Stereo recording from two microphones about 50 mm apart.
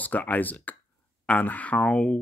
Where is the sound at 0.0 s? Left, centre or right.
Left.